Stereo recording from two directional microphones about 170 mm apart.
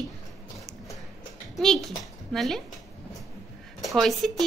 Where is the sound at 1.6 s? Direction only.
Centre (ahead or behind).